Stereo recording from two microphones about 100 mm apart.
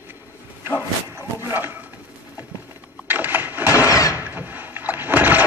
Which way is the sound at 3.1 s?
20° right (ahead or behind).